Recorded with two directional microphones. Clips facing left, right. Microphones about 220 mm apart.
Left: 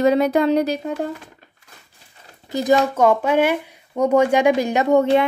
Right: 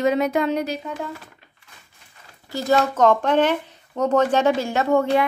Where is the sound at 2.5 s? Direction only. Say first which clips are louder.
Left 3 dB; 15° left (ahead or behind).